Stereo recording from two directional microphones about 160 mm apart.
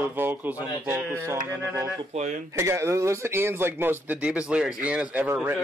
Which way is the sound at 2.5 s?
15° right (ahead or behind).